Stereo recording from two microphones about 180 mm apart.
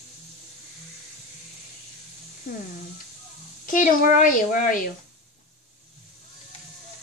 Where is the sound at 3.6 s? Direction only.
50° left (ahead or behind).